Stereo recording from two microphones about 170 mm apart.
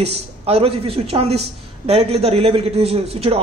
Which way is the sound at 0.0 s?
35° right (ahead or behind).